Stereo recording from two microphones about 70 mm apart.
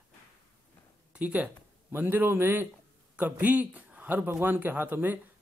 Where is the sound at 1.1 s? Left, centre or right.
Centre.